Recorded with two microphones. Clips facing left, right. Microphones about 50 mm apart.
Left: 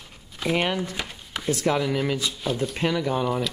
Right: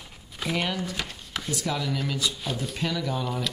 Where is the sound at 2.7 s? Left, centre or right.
Left.